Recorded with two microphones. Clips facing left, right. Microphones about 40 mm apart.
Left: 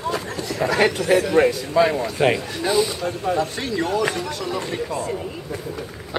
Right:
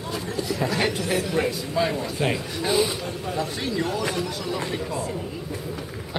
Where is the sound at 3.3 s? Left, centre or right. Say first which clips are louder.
Left 3 dB; centre.